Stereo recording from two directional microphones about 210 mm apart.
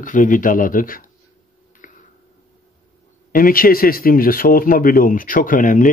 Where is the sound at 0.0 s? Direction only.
40° left (ahead or behind).